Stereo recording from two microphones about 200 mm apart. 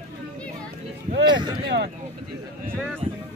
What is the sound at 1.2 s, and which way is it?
Speech, 20° right (ahead or behind).